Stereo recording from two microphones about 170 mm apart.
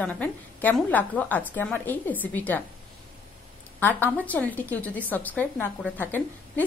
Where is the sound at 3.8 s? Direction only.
10° left (ahead or behind).